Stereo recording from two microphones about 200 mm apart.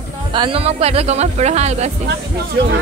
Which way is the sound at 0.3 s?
25° right (ahead or behind).